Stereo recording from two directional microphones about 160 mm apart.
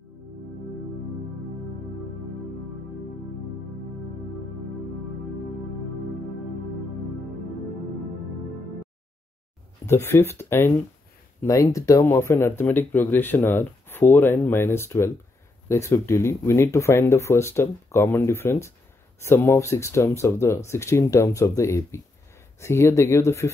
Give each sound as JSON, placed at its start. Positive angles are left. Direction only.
{"t": 9.8, "sound": "speech", "side_deg": 15}